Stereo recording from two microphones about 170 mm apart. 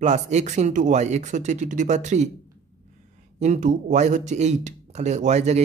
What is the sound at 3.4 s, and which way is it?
Speech, 45° right (ahead or behind).